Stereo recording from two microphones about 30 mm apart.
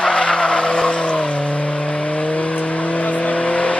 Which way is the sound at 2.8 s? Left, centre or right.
Left.